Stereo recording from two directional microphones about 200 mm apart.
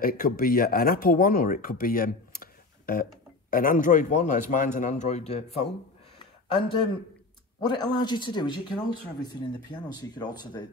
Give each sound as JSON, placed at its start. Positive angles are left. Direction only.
{"t": 0.0, "sound": "speech", "side_deg": 45}